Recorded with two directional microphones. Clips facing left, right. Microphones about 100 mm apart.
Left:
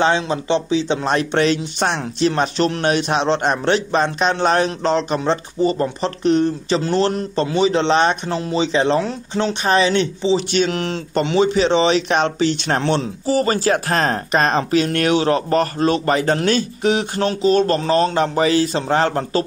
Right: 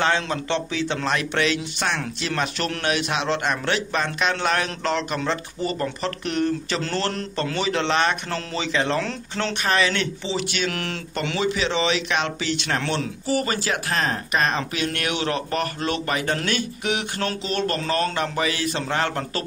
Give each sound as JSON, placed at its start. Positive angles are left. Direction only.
{"t": 0.0, "sound": "speech", "side_deg": 20}
{"t": 1.0, "sound": "speech", "side_deg": 35}